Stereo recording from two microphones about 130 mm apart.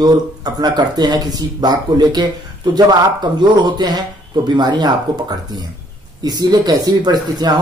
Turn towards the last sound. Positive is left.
turn(degrees=-30)  # may be behind; listen again after turning